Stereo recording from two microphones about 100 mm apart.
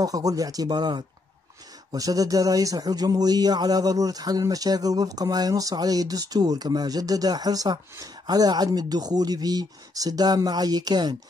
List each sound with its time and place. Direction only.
0.0 s speech: 35° right (ahead or behind)